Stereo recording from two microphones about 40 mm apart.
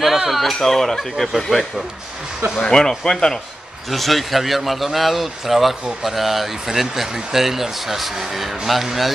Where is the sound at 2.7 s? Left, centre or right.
Centre.